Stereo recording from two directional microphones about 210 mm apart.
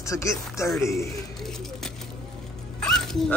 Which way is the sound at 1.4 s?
Centre (ahead or behind).